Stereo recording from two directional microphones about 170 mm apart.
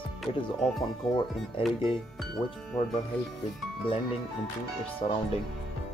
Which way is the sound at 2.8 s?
30° left (ahead or behind).